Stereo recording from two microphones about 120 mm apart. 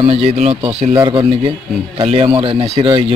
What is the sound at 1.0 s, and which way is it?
Speech, 40° right (ahead or behind).